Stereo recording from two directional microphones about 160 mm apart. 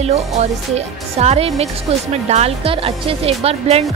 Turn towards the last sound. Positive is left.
turn(degrees=-40)  # may be behind; listen again after turning